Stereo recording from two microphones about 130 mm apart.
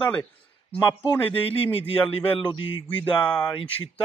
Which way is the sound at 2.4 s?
35° left (ahead or behind).